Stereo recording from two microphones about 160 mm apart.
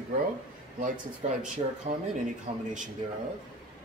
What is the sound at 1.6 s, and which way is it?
Speech, 35° right (ahead or behind).